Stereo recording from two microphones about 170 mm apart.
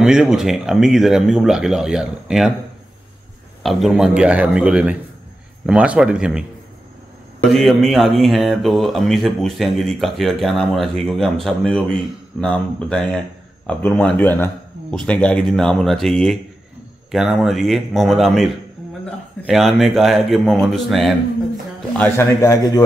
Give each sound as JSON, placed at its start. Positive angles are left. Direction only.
{"t": 0.0, "sound": "speech", "side_deg": -5}
{"t": 3.6, "sound": "speech", "side_deg": 0}
{"t": 7.5, "sound": "a man's voice", "side_deg": 0}
{"t": 21.9, "sound": "a man's voice", "side_deg": 10}